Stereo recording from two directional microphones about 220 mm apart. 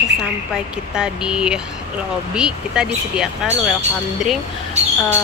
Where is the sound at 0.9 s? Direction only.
5° right (ahead or behind).